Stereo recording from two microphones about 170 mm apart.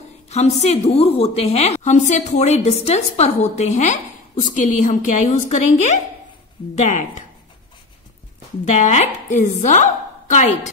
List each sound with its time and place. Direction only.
0.3 s a woman's voice: 40° left (ahead or behind)
8.6 s speech: 45° left (ahead or behind)